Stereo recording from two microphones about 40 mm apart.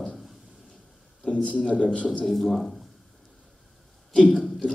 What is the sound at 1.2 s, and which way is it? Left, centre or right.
Speech, left.